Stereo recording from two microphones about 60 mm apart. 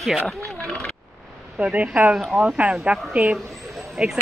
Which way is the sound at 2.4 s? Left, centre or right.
Right.